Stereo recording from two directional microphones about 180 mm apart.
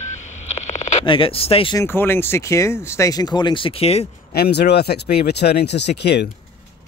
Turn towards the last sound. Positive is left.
turn(degrees=70)  # may be behind; listen again after turning